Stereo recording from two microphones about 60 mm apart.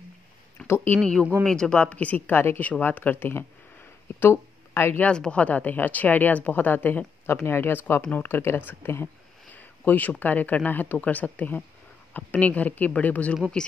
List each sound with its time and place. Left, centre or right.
0.7 s speech: left
0.9 s speech: centre; by 3.4 s left
4.2 s a sound: left
5.0 s speech: centre; by 9.1 s left
9.5 s speech: left